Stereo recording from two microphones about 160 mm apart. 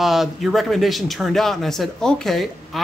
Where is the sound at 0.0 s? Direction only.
Centre (ahead or behind).